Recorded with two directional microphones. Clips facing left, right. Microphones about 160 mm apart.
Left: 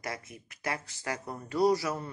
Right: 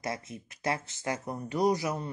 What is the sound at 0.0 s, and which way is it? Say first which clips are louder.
Speech: right 3 dB; 25° right (ahead or behind).